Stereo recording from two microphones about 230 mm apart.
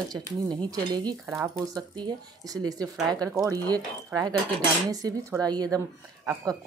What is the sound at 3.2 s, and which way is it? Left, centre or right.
Speech, centre.